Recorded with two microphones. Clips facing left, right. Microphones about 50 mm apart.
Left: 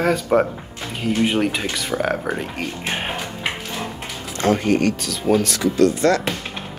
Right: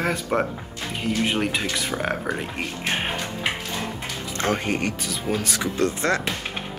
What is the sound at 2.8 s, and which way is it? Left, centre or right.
Music, centre.